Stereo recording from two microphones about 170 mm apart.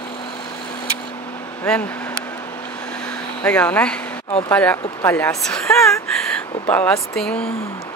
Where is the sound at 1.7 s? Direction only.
5° left (ahead or behind).